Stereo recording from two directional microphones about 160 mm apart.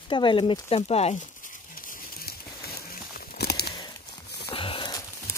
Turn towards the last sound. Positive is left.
turn(degrees=25)  # may be behind; listen again after turning